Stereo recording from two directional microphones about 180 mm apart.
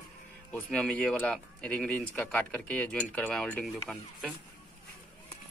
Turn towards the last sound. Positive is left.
turn(degrees=5)  # may be behind; listen again after turning